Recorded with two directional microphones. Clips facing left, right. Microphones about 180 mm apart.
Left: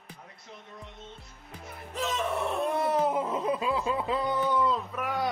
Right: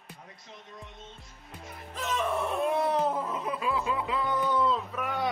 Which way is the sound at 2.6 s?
Centre (ahead or behind).